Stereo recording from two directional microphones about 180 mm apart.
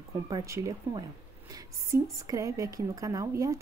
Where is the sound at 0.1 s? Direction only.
20° right (ahead or behind).